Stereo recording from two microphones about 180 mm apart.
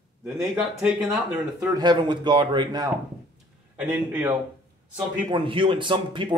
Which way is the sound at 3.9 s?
5° right (ahead or behind).